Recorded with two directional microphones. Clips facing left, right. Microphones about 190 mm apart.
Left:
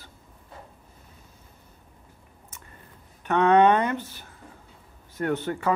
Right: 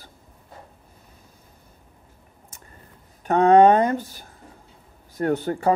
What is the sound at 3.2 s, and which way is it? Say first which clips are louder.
Speech: right 4 dB; 40° right (ahead or behind).